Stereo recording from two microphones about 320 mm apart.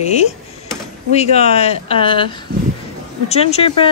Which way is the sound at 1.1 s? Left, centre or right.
Centre.